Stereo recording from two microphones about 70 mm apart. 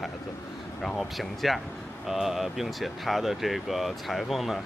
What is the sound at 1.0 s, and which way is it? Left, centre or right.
A man's voice, centre.